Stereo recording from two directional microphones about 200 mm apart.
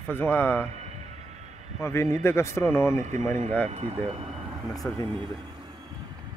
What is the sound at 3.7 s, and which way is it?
Speech, 30° right (ahead or behind).